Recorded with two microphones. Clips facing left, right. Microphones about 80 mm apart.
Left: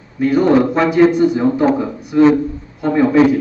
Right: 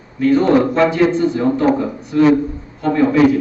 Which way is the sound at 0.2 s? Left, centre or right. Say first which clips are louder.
Even; centre.